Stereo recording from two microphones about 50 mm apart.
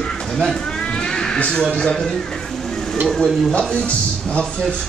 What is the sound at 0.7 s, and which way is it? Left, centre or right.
Cat, centre.